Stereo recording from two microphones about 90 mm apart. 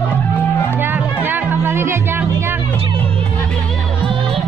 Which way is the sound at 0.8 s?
20° right (ahead or behind).